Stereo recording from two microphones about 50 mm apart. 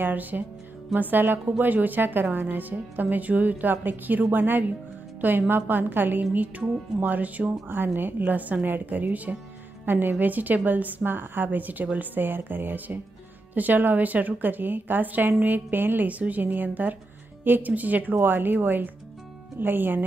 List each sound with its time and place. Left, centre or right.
0.0 s a woman's voice: right
7.6 s a woman's voice: right
9.8 s a woman's voice: right
16.1 s a woman's voice: right